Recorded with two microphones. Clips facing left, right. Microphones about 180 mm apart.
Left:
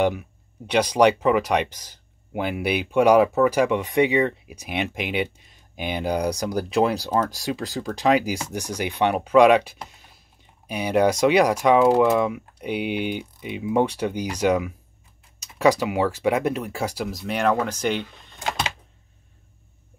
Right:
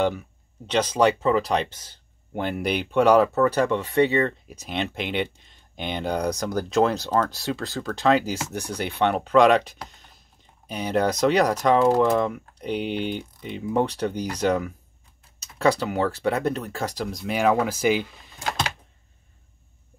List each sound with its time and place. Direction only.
0.0 s speech: 10° left (ahead or behind); by 18.4 s 5° right (ahead or behind)